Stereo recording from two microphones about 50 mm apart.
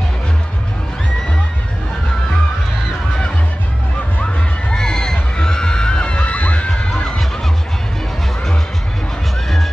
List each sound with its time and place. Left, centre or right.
4.7 s music: centre; by 6.7 s left